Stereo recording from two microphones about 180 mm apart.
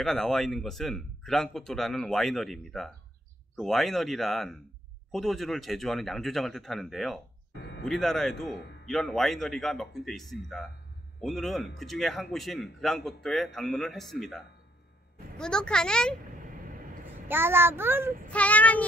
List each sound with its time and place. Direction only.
0.0 s a man's voice: centre (ahead or behind)
7.5 s a sound: 70° left (ahead or behind)
7.8 s a man's voice: centre (ahead or behind)
15.3 s a man's voice: 5° left (ahead or behind)
17.3 s a child's voice: 10° right (ahead or behind)
18.3 s speech: 10° left (ahead or behind)